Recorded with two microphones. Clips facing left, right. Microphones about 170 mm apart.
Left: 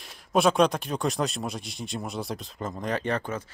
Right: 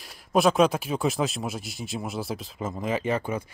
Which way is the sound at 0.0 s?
Centre (ahead or behind).